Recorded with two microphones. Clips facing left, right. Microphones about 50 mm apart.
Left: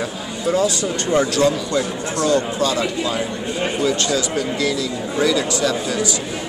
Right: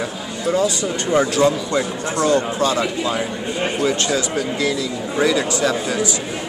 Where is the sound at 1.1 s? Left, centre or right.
Right.